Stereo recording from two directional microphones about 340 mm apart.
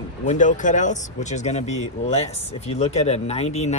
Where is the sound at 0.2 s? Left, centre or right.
Left.